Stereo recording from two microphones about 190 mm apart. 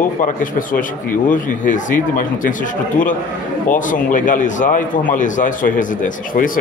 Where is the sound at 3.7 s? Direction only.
45° left (ahead or behind).